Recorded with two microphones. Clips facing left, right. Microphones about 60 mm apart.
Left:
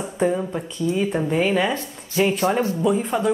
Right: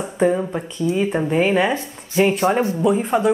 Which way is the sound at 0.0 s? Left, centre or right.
Centre.